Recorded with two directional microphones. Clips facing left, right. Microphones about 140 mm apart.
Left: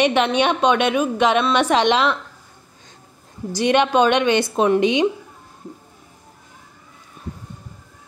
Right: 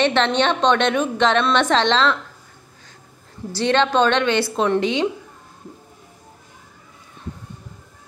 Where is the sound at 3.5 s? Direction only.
15° left (ahead or behind).